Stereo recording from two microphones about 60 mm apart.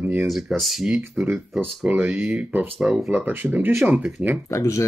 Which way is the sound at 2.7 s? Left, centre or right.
Centre.